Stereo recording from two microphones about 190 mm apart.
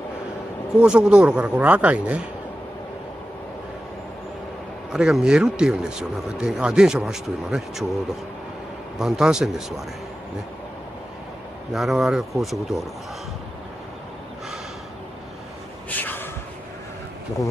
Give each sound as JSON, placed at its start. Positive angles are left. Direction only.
{"t": 0.7, "sound": "speech", "side_deg": -5}
{"t": 4.9, "sound": "speech", "side_deg": 0}
{"t": 8.9, "sound": "speech", "side_deg": 0}
{"t": 11.7, "sound": "speech", "side_deg": 0}
{"t": 15.9, "sound": "gasp", "side_deg": 10}